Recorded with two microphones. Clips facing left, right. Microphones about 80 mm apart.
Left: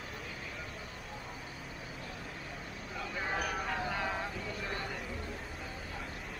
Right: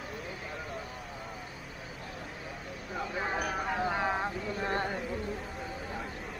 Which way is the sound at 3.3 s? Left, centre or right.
Centre.